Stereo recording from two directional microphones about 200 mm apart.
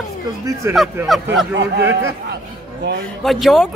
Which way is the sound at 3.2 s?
Centre (ahead or behind).